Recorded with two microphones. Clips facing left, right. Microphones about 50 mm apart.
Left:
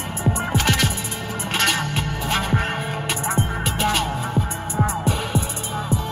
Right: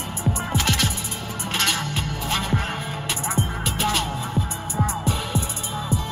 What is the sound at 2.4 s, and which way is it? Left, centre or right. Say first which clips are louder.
Music: left 3 dB; centre.